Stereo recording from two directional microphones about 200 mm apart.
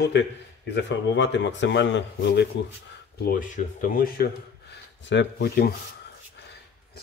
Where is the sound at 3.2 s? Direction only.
45° left (ahead or behind).